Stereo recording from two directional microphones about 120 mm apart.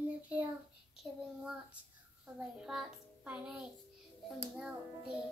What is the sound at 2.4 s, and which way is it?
A child's voice, 5° right (ahead or behind).